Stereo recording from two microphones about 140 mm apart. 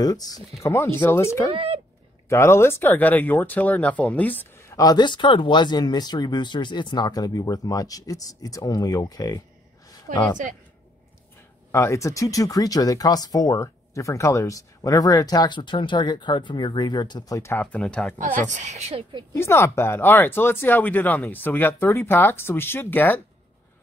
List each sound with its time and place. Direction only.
0.0 s speech: 25° left (ahead or behind)
1.5 s speech: 40° right (ahead or behind)
2.2 s speech: 20° left (ahead or behind)
10.1 s a woman's voice: 80° right
11.7 s speech: 20° left (ahead or behind)
18.1 s speech: 65° right (ahead or behind); by 19.0 s 50° right (ahead or behind)
19.3 s speech: 20° left (ahead or behind)